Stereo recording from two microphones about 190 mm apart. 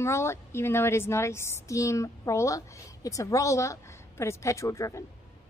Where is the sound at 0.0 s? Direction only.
15° left (ahead or behind).